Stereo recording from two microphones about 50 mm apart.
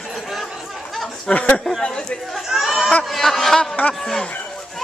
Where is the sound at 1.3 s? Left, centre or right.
Left.